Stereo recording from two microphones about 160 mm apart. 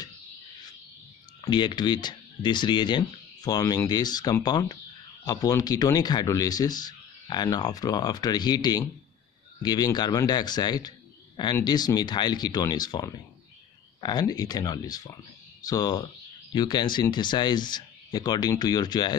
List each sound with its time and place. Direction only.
1.4 s speech: 30° left (ahead or behind)